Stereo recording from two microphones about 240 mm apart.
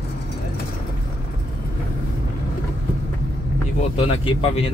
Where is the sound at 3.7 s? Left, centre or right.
Left.